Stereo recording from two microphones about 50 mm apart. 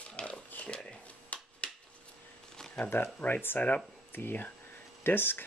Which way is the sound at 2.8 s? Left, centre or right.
Left.